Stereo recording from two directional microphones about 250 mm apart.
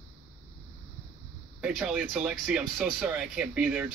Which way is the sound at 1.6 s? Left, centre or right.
Centre.